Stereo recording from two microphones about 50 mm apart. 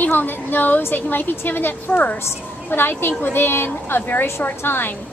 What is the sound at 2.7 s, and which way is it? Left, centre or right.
A woman's voice, left.